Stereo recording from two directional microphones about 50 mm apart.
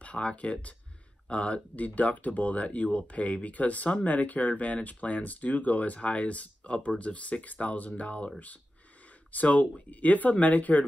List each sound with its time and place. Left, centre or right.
0.0 s speech: left
9.3 s speech: left